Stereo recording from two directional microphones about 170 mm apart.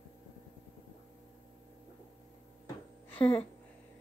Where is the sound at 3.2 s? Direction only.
35° left (ahead or behind).